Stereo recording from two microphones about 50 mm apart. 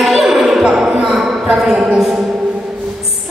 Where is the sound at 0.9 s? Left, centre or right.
Right.